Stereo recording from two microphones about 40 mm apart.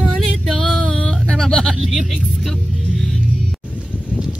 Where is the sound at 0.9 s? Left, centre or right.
Centre.